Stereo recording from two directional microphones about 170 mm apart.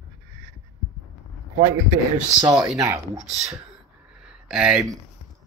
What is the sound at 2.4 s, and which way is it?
Speech, 25° right (ahead or behind).